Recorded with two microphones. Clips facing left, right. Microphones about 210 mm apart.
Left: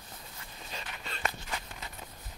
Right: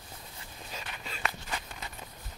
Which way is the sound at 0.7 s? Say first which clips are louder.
Even; 5° right (ahead or behind).